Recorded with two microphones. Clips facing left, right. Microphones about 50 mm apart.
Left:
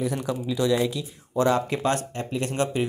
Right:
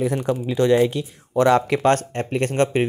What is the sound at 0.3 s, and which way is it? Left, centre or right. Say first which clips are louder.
Speech: right 6 dB; right.